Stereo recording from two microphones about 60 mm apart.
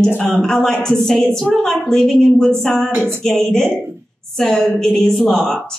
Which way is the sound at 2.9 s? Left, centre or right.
Right.